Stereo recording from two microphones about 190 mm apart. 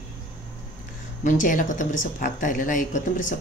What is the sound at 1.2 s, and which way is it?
A woman's voice, 45° left (ahead or behind).